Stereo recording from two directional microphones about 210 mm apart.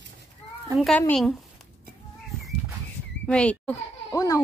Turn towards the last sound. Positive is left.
turn(degrees=15)  # may be behind; listen again after turning